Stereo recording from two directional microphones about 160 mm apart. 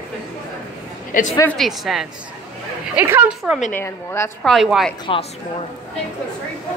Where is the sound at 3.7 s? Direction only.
15° left (ahead or behind).